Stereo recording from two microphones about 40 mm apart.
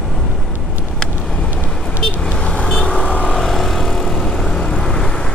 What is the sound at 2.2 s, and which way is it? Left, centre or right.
Vehicle, left.